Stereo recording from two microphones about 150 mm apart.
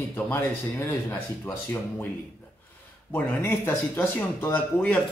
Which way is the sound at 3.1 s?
15° left (ahead or behind).